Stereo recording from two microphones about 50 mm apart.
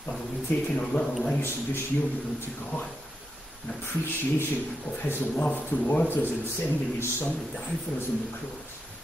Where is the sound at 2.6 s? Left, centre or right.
Left.